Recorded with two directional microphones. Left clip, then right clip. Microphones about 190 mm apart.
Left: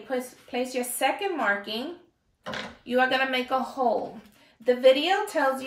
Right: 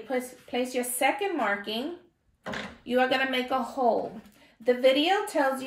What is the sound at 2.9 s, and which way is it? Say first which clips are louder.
Speech: left 2 dB; 5° left (ahead or behind).